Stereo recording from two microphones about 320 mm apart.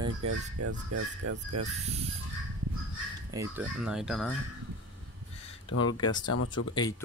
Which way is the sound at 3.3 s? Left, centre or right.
Centre.